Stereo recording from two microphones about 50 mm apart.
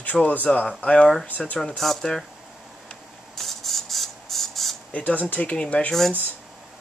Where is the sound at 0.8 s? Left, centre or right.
Centre.